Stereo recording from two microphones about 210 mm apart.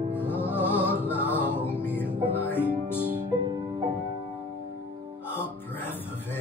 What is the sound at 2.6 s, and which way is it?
Music, 10° left (ahead or behind).